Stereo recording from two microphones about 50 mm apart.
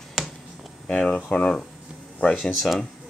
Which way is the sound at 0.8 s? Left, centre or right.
Centre.